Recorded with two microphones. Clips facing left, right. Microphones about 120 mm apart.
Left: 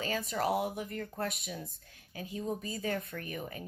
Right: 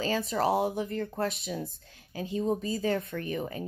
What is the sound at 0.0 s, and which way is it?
A woman's voice, 30° right (ahead or behind).